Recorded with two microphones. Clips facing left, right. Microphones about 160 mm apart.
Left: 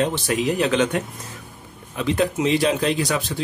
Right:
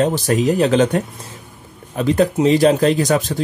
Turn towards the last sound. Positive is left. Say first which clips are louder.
# right 6 dB
turn(degrees=-45)  # may be behind; listen again after turning